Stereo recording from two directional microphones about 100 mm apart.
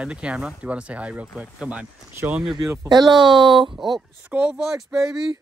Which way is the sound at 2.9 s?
45° right (ahead or behind).